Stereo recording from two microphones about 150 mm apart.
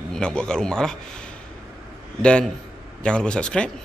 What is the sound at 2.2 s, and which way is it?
Speech, 5° left (ahead or behind).